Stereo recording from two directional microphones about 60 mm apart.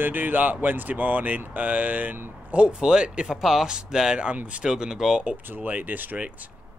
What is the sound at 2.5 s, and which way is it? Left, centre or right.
Speech, centre.